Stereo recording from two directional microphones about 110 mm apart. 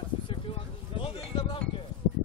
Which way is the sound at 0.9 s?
60° left (ahead or behind).